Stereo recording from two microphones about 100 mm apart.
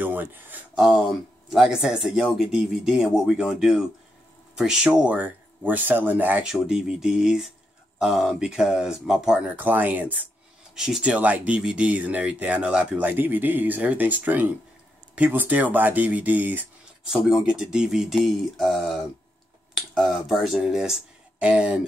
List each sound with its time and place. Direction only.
0.0 s a sound: 20° right (ahead or behind)
0.7 s speech: 10° right (ahead or behind)
6.4 s speech: 5° right (ahead or behind)
9.6 s speech: 20° right (ahead or behind)
10.7 s speech: 5° right (ahead or behind)
17.6 s speech: 5° right (ahead or behind)